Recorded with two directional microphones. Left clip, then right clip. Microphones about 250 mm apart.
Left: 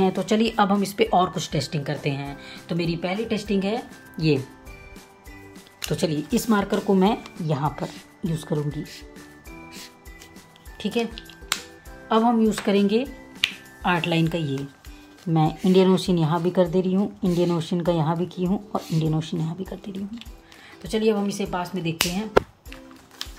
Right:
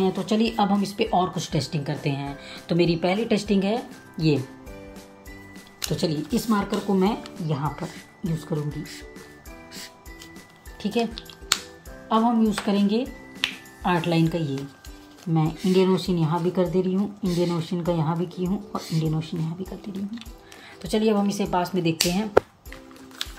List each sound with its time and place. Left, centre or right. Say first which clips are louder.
0.0 s speech: left 2 dB; centre
5.9 s speech: left 1 dB; centre
10.8 s speech: even; centre
12.1 s speech: left 2 dB; centre
13.4 s finger snapping: left 2 dB; centre
15.3 s speech: left 3 dB; centre
20.8 s speech: even; centre